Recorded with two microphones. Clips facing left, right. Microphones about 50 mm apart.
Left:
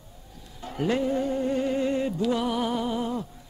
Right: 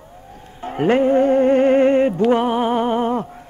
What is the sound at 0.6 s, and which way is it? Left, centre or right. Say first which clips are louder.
Music: right 10 dB; right.